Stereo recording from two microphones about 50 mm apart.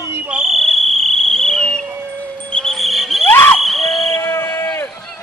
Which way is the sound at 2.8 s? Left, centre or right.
Centre.